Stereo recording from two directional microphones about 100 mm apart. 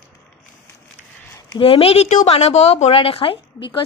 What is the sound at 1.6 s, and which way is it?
Speech, 65° left (ahead or behind).